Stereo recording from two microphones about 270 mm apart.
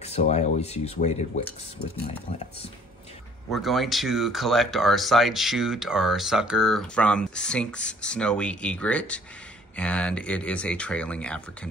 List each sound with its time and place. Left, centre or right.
0.0 s speech: left
3.4 s speech: centre